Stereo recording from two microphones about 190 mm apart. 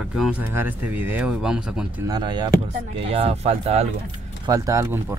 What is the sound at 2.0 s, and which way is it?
Speech, 20° right (ahead or behind).